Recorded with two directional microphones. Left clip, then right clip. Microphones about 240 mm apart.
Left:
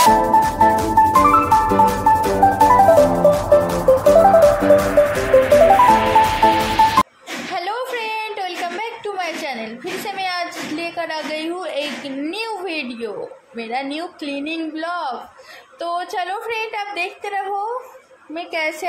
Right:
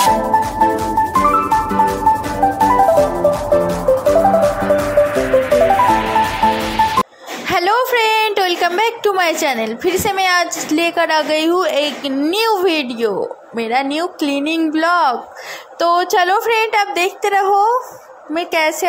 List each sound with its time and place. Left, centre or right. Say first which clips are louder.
0.1 s music: left 1 dB; centre
7.5 s a sound: right 10 dB; right
13.6 s a woman's voice: right 8 dB; right